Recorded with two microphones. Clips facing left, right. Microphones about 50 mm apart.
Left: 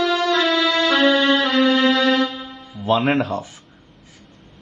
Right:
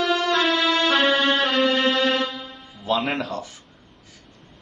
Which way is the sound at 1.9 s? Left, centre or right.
Left.